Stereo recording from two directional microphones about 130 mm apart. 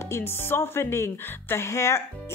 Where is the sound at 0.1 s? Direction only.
20° left (ahead or behind).